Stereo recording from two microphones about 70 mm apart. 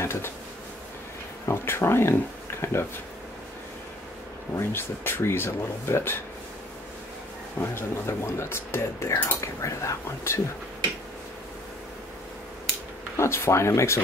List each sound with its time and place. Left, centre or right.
0.0 s bee: left
1.4 s speech: left
4.6 s speech: left
7.6 s speech: left
13.2 s speech: left